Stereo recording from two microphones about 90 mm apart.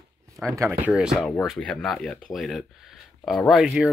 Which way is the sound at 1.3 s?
5° left (ahead or behind).